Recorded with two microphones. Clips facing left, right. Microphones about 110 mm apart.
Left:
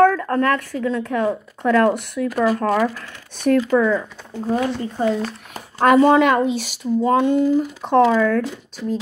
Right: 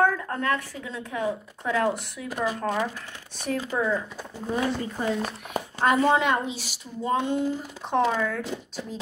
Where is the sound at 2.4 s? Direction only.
90° left.